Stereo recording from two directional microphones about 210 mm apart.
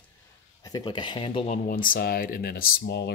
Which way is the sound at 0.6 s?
20° left (ahead or behind).